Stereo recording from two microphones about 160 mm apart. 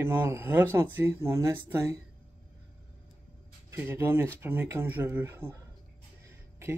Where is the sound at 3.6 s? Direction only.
15° right (ahead or behind).